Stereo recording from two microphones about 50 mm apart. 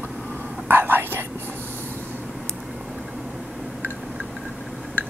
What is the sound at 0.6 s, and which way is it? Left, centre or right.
Whispering, right.